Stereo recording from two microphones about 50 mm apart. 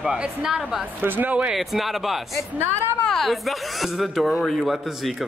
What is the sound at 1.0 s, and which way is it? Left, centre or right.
Speech, right.